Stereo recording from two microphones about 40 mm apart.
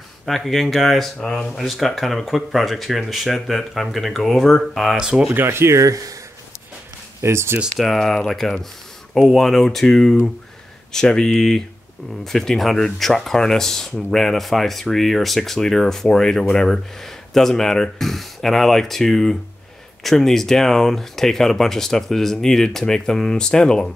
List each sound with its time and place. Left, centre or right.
0.4 s speech: centre
1.3 s speech: centre
1.6 s speech: centre
5.3 s speech: right
7.2 s speech: right
7.8 s speech: centre